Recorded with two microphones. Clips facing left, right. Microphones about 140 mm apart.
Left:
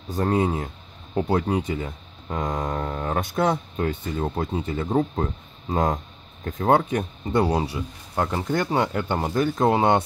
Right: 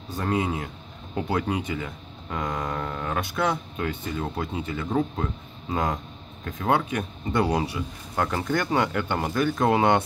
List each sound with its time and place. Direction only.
0.2 s speech: 40° left (ahead or behind)